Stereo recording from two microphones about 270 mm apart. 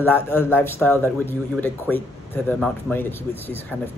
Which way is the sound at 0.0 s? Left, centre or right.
Centre.